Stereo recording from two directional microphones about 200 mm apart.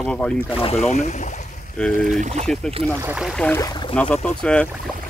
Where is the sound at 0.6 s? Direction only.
30° left (ahead or behind).